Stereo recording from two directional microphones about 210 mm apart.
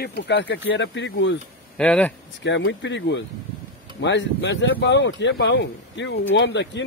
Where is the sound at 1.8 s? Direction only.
5° left (ahead or behind).